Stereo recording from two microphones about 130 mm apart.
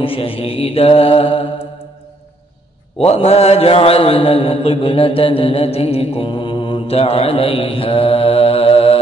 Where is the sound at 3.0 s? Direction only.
55° left (ahead or behind).